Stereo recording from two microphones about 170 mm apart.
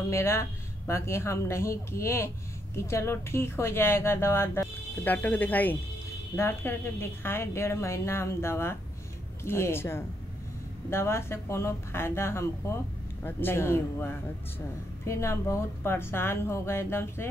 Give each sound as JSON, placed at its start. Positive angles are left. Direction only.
{"t": 0.1, "sound": "a woman's voice", "side_deg": 15}